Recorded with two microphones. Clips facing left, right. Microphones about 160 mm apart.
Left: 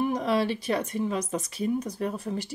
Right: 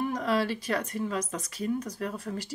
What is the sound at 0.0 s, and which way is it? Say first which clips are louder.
Speech: left 3 dB; 20° left (ahead or behind).